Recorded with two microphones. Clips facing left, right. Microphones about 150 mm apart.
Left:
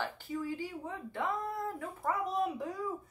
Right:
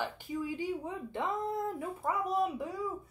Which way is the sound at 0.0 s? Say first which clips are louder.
Right 1 dB; 15° right (ahead or behind).